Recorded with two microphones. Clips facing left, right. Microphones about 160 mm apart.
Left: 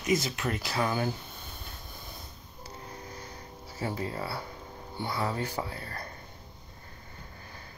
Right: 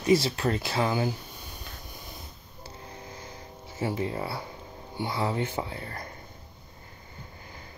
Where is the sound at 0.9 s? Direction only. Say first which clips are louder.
Right 3 dB; 15° right (ahead or behind).